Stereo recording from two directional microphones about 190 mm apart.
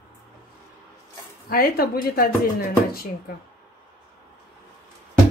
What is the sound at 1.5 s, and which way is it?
Speech, 50° left (ahead or behind).